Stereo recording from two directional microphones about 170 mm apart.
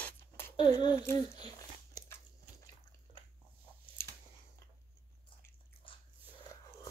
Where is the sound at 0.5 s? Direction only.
30° left (ahead or behind).